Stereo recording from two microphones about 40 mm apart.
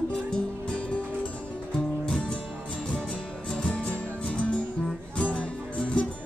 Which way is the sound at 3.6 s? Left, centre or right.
Left.